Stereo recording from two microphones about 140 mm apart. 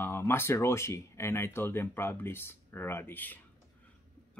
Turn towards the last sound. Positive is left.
turn(degrees=15)  # may be behind; listen again after turning